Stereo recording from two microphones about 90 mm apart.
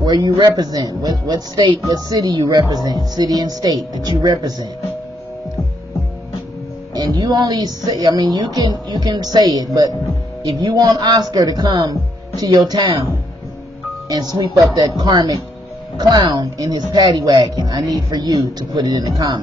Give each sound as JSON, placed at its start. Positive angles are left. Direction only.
{"t": 0.0, "sound": "speech", "side_deg": -50}
{"t": 6.9, "sound": "speech", "side_deg": -50}
{"t": 14.0, "sound": "speech", "side_deg": -50}